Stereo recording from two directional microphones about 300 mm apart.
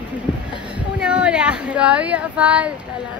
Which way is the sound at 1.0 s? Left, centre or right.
Centre.